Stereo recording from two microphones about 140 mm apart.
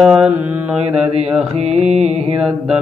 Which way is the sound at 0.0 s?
5° right (ahead or behind).